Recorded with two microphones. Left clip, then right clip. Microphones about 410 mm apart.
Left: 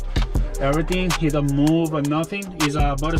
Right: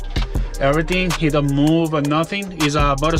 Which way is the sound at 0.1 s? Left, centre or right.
Centre.